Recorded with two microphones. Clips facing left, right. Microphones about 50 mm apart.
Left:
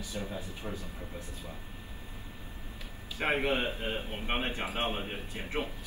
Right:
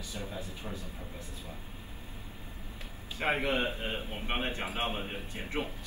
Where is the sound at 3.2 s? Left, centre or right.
Left.